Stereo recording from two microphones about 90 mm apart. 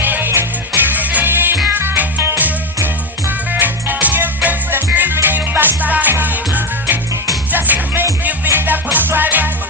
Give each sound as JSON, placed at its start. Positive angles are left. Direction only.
{"t": 0.0, "sound": "music", "side_deg": -20}